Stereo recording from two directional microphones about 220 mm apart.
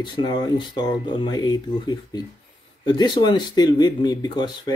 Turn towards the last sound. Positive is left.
turn(degrees=20)  # may be behind; listen again after turning